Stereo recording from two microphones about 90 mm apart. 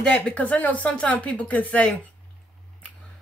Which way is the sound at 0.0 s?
15° left (ahead or behind).